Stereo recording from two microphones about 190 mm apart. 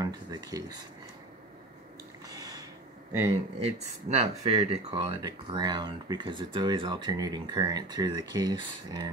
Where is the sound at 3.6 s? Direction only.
30° right (ahead or behind).